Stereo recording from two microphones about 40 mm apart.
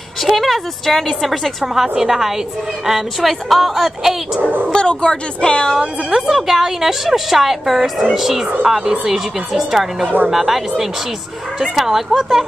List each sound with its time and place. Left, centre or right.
0.2 s a woman's voice: centre
1.6 s a woman's voice: centre
4.4 s speech: right
4.6 s speech: left
5.8 s a woman's voice: centre